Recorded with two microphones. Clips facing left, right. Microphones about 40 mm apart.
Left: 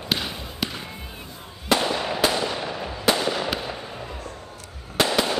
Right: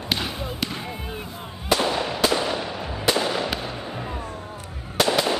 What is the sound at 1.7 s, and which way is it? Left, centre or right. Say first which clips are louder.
Fireworks: even; centre.